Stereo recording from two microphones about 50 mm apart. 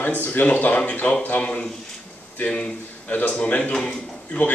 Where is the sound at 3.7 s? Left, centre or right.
Centre.